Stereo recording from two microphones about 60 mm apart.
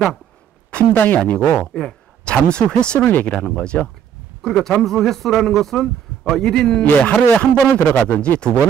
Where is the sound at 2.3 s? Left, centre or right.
Centre.